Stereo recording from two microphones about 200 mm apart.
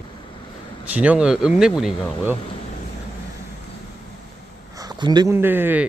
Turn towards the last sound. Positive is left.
turn(degrees=-10)  # may be behind; listen again after turning